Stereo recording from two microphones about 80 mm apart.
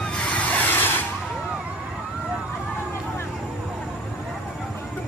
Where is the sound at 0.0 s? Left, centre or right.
Centre.